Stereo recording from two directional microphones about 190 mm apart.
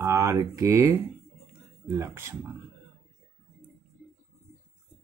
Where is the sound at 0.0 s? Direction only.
15° right (ahead or behind).